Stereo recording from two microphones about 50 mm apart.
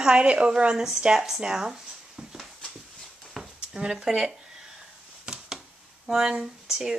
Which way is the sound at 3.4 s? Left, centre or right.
Centre.